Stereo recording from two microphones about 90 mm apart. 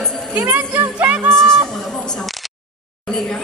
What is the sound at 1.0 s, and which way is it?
Music, 15° right (ahead or behind).